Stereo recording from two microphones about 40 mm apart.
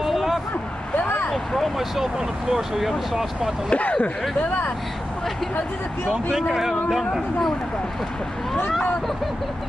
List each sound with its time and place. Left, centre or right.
0.0 s vehicle: centre
0.9 s vehicle: left
1.3 s speech: centre
3.7 s speech: left
4.4 s speech: left
6.7 s speech: centre